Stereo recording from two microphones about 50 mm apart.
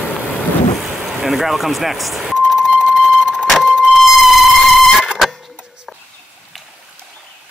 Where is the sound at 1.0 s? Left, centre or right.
Centre.